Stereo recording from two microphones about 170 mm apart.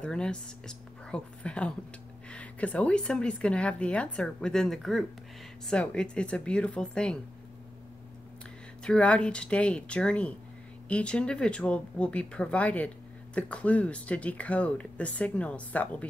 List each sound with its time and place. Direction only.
0.0 s speech: 5° left (ahead or behind)
8.8 s speech: 5° left (ahead or behind)